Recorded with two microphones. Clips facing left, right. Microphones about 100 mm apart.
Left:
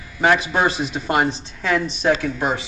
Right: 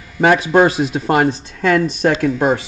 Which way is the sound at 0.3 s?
50° right (ahead or behind).